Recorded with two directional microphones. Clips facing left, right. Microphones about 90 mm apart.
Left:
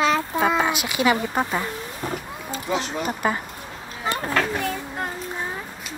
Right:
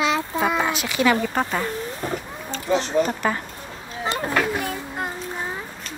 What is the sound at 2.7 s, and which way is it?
Speech, 35° right (ahead or behind).